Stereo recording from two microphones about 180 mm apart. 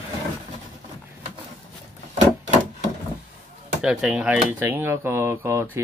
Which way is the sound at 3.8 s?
5° right (ahead or behind).